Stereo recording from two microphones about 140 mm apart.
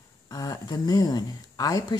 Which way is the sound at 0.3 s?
25° left (ahead or behind).